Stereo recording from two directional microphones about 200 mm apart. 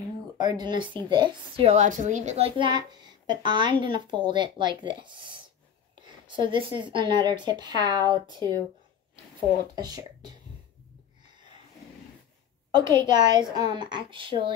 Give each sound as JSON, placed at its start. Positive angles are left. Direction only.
{"t": 0.5, "sound": "a woman's voice", "side_deg": -20}
{"t": 9.8, "sound": "a woman's voice", "side_deg": -20}
{"t": 12.7, "sound": "a woman's voice", "side_deg": -20}